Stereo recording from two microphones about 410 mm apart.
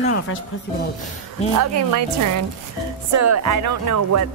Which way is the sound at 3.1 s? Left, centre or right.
Right.